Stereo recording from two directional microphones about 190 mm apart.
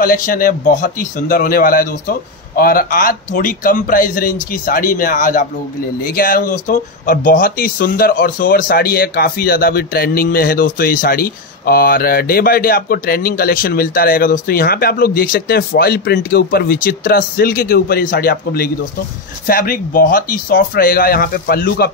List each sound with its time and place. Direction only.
0.0 s speech: 45° left (ahead or behind)